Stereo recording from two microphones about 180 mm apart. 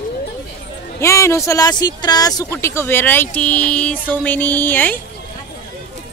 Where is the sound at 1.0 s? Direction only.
15° left (ahead or behind).